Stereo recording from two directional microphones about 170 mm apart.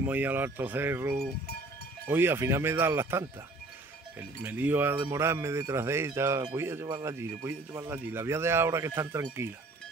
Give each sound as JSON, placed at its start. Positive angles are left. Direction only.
{"t": 0.0, "sound": "speech", "side_deg": -10}